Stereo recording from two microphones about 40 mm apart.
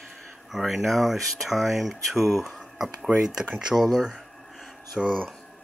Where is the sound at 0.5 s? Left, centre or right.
Centre.